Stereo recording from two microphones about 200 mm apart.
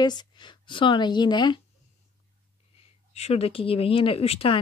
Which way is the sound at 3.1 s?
30° left (ahead or behind).